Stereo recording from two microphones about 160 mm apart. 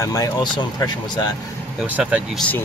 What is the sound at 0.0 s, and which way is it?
Speech, 20° left (ahead or behind).